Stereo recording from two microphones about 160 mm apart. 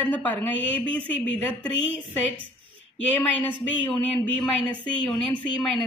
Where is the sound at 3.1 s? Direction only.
10° left (ahead or behind).